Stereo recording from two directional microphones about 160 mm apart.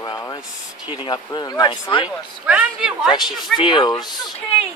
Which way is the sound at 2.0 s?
5° right (ahead or behind).